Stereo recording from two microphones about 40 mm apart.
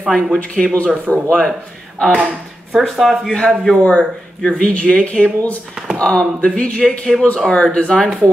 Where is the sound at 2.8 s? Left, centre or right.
Centre.